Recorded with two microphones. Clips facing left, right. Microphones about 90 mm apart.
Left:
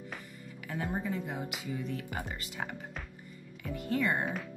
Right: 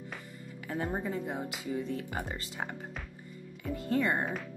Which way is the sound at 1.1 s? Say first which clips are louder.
Right 1 dB; 30° right (ahead or behind).